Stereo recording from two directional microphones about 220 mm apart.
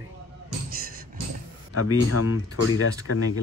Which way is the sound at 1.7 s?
85° left.